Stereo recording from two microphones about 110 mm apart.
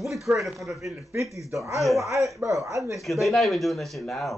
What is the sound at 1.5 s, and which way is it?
A man's voice, 25° right (ahead or behind).